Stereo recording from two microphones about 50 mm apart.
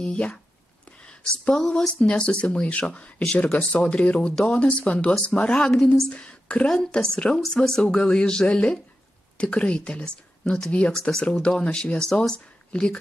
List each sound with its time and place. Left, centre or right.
0.0 s speech: centre
1.0 s a sound: left
1.7 s speech: left
5.7 s speech: centre
6.0 s a woman's voice: left
10.9 s speech: centre